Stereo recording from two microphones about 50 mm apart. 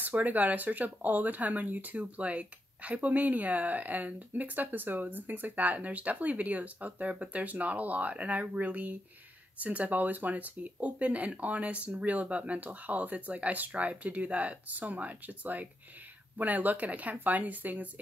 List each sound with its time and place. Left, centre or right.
0.0 s speech: right